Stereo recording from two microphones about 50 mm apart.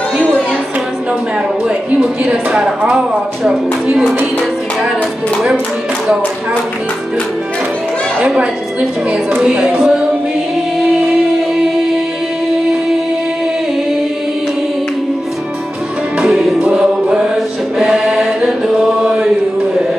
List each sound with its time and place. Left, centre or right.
2.0 s a woman's voice: centre
9.4 s speech: centre
11.5 s music: centre
16.2 s music: centre
17.7 s choir: centre
18.4 s chant: centre